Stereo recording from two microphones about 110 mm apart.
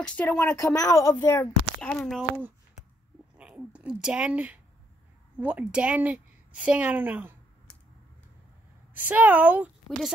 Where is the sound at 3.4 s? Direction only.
10° right (ahead or behind).